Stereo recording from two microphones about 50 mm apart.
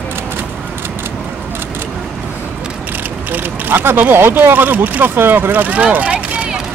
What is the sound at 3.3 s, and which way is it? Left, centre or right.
Speech, right.